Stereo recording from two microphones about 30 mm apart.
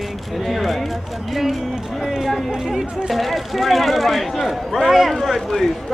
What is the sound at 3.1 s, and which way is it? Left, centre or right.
Speech, centre.